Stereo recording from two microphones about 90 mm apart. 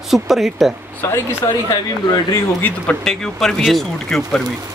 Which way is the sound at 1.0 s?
25° left (ahead or behind).